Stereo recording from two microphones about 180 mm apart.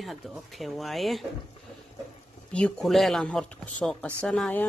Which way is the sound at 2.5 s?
5° left (ahead or behind).